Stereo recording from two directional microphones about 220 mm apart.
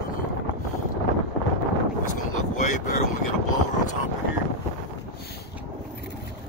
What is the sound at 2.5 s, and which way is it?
Wind noise, 35° left (ahead or behind).